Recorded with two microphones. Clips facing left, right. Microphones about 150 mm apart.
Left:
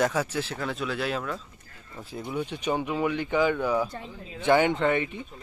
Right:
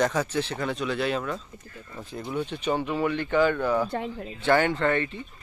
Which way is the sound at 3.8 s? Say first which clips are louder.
Right 9 dB; 65° right (ahead or behind).